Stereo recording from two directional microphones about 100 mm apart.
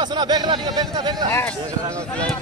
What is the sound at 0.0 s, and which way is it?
Speech, 45° right (ahead or behind).